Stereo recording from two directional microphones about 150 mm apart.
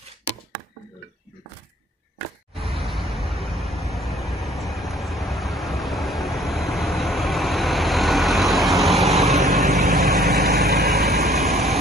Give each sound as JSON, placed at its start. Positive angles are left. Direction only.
{"t": 2.6, "sound": "vehicle", "side_deg": 0}
{"t": 10.1, "sound": "vehicle", "side_deg": -90}